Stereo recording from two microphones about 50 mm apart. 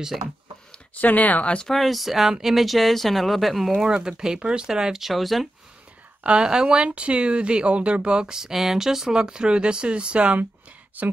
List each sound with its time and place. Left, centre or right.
0.9 s speech: left
1.4 s speech: left
1.7 s speech: centre
3.7 s speech: centre
6.2 s speech: centre
11.0 s speech: right